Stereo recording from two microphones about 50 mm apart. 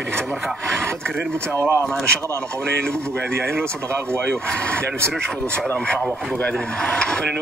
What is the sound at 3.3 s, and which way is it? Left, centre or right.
Speech, right.